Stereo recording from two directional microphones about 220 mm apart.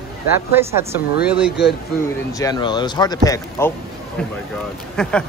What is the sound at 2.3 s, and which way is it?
A man's voice, 15° left (ahead or behind).